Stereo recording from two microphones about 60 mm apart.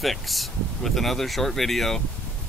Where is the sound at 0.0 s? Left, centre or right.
Centre.